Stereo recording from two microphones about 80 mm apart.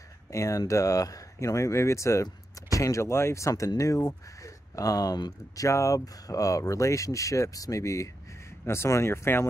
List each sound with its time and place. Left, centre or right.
0.3 s speech: left
5.7 s speech: left